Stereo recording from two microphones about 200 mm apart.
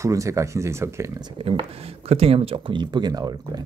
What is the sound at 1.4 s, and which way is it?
Speech, 25° right (ahead or behind).